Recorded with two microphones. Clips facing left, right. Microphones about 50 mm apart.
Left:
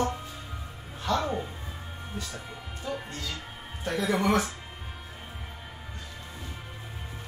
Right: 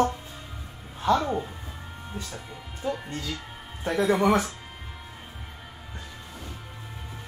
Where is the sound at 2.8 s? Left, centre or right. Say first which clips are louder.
Right 4 dB; right.